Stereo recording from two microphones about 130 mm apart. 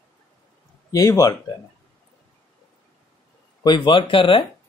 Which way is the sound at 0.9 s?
25° left (ahead or behind).